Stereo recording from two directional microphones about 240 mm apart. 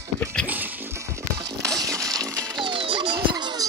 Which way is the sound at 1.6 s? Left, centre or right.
Centre.